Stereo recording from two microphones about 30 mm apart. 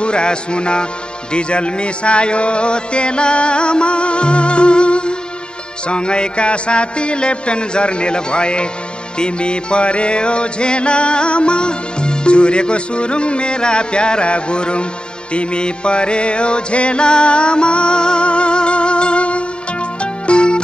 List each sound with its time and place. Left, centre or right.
0.0 s music: left